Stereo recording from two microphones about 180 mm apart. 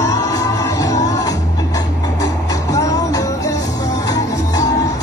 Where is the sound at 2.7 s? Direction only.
20° left (ahead or behind).